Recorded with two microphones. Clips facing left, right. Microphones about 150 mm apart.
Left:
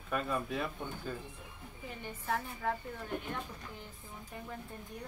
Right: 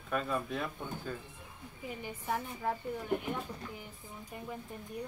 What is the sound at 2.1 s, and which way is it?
Speech, 10° right (ahead or behind).